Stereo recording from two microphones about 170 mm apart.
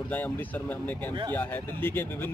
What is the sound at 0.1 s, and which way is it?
Speech, 10° left (ahead or behind).